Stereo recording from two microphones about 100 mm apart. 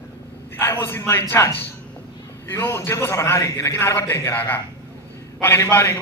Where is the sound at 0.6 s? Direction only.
25° left (ahead or behind).